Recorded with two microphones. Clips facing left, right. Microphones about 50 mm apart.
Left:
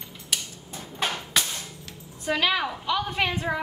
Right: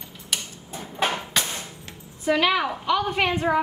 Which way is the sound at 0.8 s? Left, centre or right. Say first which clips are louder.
Right 4 dB; centre.